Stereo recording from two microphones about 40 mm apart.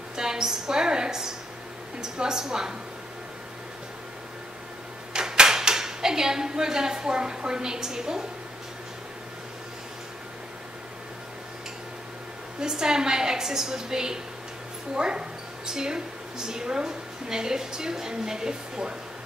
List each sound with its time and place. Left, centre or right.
0.1 s a woman's voice: centre
5.1 s speech: right
12.5 s a woman's voice: centre